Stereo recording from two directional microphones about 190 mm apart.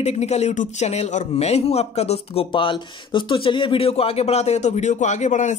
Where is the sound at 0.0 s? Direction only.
35° left (ahead or behind).